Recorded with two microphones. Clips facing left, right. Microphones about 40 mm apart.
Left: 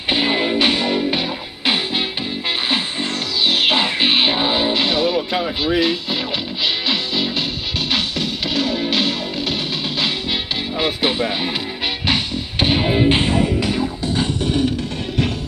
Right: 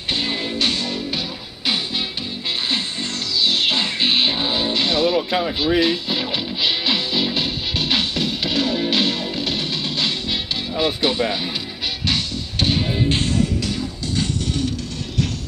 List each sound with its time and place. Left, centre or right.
0.1 s music: left
3.4 s music: left; by 9.6 s centre
10.8 s speech: centre
12.1 s music: left